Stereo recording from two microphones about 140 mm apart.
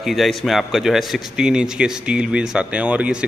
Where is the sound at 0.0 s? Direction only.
Centre (ahead or behind).